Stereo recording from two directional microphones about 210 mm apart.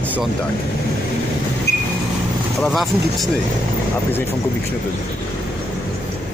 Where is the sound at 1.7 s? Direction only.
50° left (ahead or behind).